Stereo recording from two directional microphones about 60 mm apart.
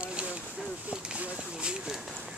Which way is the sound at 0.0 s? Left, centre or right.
Centre.